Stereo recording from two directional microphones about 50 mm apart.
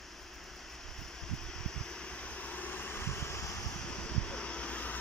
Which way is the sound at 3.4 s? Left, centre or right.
Left.